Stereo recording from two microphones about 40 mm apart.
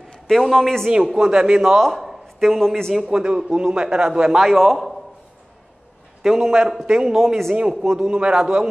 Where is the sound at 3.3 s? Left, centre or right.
Right.